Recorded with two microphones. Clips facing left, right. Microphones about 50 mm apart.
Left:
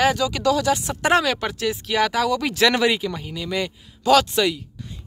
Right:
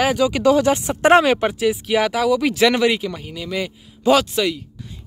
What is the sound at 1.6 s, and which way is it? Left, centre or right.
Speech, centre.